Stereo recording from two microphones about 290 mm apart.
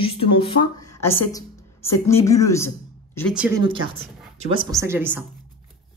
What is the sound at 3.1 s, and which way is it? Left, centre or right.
Speech, centre.